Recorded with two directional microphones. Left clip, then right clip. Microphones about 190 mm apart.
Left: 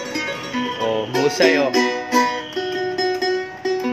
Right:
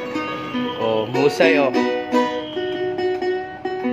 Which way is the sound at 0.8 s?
10° right (ahead or behind).